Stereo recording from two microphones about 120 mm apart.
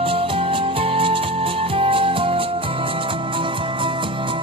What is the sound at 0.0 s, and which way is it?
Music, 50° right (ahead or behind).